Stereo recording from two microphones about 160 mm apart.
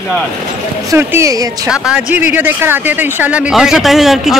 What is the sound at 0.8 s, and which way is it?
Speech, 15° right (ahead or behind).